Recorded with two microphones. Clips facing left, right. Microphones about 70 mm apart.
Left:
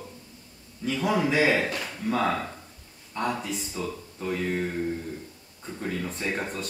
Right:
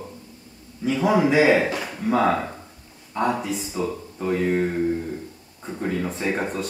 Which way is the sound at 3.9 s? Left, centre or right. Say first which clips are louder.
Right 6 dB; centre.